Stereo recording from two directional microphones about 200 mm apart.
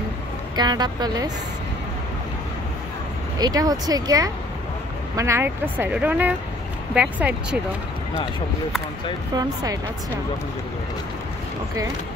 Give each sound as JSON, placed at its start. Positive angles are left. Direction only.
{"t": 0.6, "sound": "speech", "side_deg": -20}
{"t": 3.3, "sound": "speech", "side_deg": -20}
{"t": 9.3, "sound": "speech", "side_deg": -20}